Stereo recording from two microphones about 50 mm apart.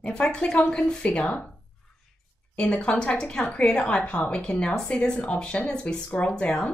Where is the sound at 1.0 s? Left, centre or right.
Left.